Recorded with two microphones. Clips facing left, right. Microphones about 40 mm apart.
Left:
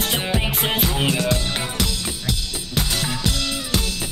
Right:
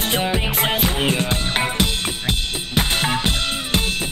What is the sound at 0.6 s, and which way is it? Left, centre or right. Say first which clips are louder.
Music: right 2 dB; centre.